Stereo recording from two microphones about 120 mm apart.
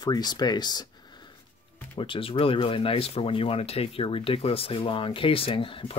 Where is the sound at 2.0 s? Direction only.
45° left (ahead or behind).